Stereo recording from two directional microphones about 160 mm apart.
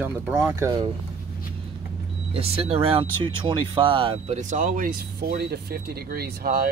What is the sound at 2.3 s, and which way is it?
Speech, 35° right (ahead or behind).